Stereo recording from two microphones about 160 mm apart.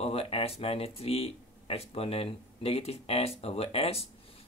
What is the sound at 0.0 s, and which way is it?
Speech, 35° left (ahead or behind).